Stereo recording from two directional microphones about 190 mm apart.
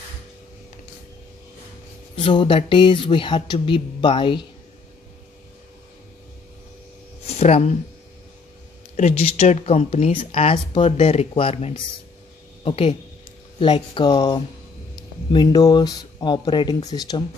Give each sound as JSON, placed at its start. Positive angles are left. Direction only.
{"t": 2.1, "sound": "speech", "side_deg": 25}
{"t": 7.2, "sound": "a sound", "side_deg": 35}
{"t": 8.9, "sound": "speech", "side_deg": 35}